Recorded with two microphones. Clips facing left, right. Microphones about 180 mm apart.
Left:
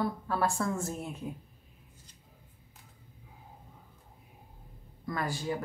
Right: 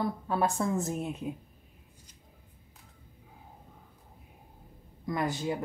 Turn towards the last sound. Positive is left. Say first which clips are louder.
# right 3 dB
turn(degrees=-20)  # may be behind; listen again after turning